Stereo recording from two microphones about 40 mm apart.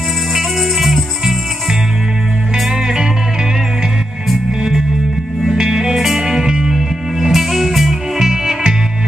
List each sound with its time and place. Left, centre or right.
0.3 s music: centre
2.5 s music: centre
4.6 s music: centre
8.3 s music: centre